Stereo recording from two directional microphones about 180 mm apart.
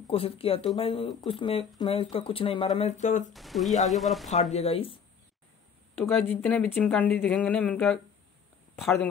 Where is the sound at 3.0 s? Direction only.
40° left (ahead or behind).